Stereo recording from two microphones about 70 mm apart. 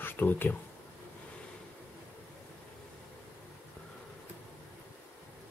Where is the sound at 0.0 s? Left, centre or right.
Left.